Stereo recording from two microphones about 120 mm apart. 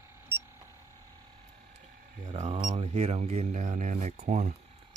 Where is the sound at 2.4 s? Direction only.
50° right (ahead or behind); by 4.5 s 75° right (ahead or behind).